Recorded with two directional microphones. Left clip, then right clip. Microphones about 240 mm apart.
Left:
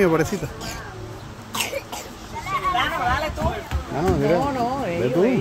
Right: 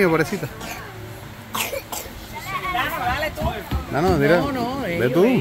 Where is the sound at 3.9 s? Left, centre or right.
Right.